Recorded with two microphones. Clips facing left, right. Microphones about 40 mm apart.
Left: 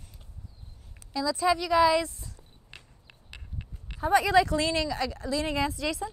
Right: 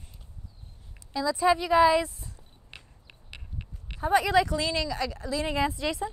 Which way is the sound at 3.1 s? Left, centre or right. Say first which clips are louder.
Right 2 dB; right.